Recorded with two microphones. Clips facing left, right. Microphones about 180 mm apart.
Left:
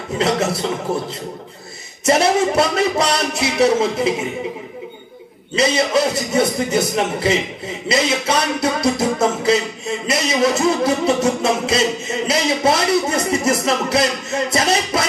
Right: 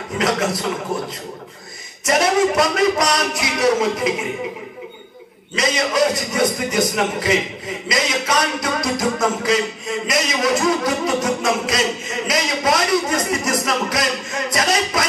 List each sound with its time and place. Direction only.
0.2 s a man's voice: 30° left (ahead or behind)
0.9 s a man's voice: 10° left (ahead or behind)
2.0 s a man's voice: 30° left (ahead or behind)
5.6 s a man's voice: 30° left (ahead or behind)